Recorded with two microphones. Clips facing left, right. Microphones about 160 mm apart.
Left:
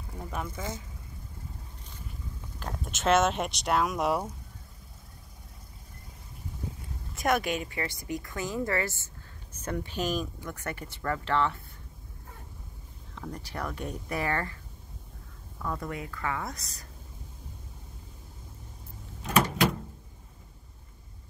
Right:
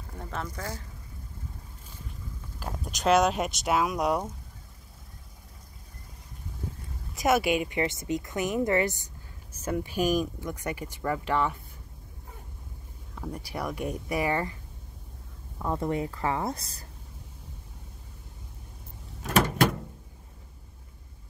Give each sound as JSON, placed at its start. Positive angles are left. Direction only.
{"t": 0.2, "sound": "speech", "side_deg": 10}
{"t": 0.6, "sound": "speech", "side_deg": 20}
{"t": 2.6, "sound": "speech", "side_deg": 0}
{"t": 7.2, "sound": "speech", "side_deg": -5}
{"t": 13.1, "sound": "speech", "side_deg": -10}
{"t": 15.6, "sound": "speech", "side_deg": -25}